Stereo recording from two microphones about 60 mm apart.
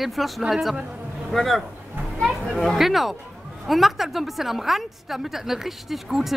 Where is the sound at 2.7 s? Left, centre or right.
Centre.